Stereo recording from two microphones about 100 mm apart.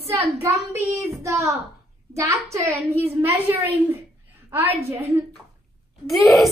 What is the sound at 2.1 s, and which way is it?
A child's voice, 30° right (ahead or behind).